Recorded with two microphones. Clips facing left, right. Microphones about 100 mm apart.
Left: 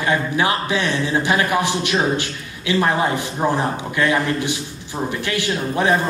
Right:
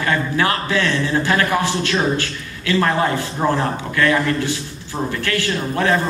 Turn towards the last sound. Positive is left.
turn(degrees=15)  # may be behind; listen again after turning